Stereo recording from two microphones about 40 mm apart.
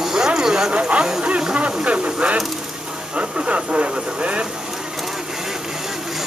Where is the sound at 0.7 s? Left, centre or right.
Right.